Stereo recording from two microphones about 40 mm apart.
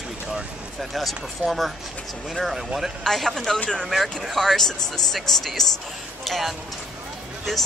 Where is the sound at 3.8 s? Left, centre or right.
Centre.